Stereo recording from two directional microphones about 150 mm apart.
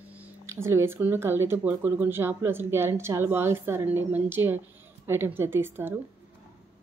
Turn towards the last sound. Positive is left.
turn(degrees=-15)  # may be behind; listen again after turning